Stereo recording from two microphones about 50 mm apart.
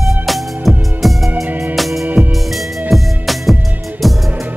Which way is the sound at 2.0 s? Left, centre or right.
Right.